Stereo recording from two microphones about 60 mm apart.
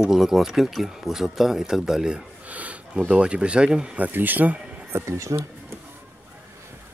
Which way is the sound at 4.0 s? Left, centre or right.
Right.